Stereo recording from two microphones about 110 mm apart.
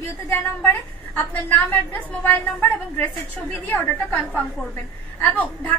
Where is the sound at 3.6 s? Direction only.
15° left (ahead or behind).